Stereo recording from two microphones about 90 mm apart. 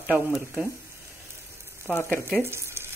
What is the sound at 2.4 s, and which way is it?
Frying, 30° right (ahead or behind).